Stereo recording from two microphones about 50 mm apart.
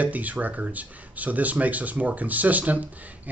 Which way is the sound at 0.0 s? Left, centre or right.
Right.